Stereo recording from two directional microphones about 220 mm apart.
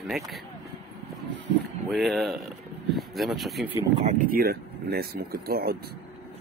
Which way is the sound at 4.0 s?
35° right (ahead or behind).